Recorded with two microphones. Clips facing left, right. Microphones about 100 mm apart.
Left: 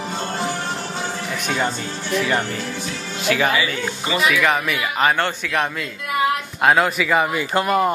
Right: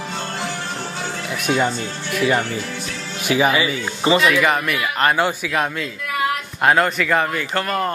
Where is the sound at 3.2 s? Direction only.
15° right (ahead or behind).